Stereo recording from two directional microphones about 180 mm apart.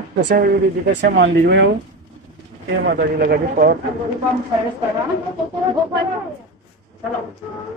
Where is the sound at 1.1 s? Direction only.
75° right (ahead or behind).